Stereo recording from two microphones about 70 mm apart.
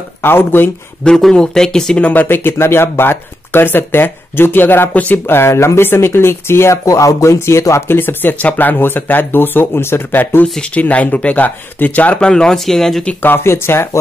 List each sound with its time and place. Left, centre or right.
0.2 s speech: left
1.0 s speech: centre
2.0 s speech: left
5.5 s speech: left
5.8 s speech: left
7.3 s speech: left
10.6 s speech: centre
13.2 s speech: left